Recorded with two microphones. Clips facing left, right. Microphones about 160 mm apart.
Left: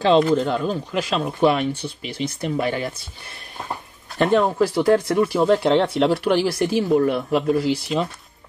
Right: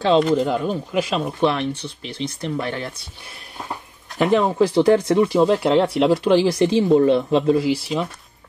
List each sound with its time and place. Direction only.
0.0 s speech: centre (ahead or behind)
1.4 s speech: 10° left (ahead or behind)
4.2 s speech: 10° right (ahead or behind)
4.6 s speech: 20° right (ahead or behind)